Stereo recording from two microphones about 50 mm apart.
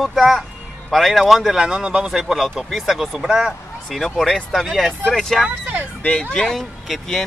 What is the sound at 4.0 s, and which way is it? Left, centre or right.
Speech, centre.